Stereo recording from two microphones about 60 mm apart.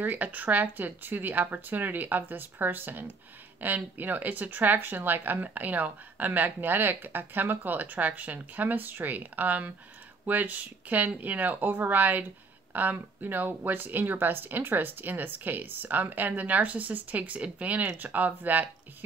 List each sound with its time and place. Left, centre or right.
0.0 s speech: right